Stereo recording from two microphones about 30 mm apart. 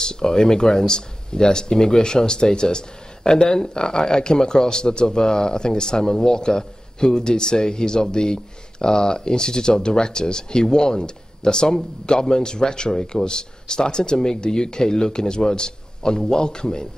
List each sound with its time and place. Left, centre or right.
0.0 s speech: left